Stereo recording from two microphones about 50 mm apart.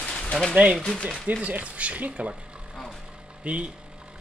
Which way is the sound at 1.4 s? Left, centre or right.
Right.